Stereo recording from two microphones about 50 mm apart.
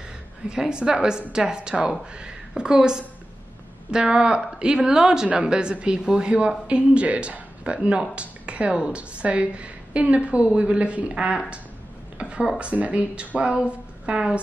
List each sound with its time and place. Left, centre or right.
0.5 s a woman's voice: centre